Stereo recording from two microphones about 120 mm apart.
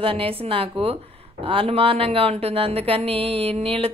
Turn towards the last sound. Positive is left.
turn(degrees=-50)  # may be behind; listen again after turning